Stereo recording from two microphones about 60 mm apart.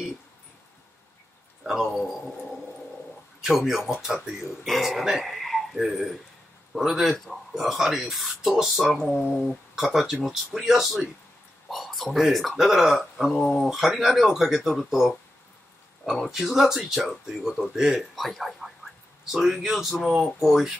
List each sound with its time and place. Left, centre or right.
1.6 s speech: centre
3.3 s speech: centre